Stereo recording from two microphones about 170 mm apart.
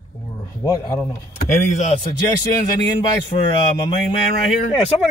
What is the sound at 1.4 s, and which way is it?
Speech, 45° left (ahead or behind).